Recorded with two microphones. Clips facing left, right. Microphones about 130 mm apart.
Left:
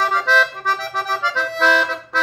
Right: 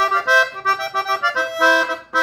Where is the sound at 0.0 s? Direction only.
10° right (ahead or behind).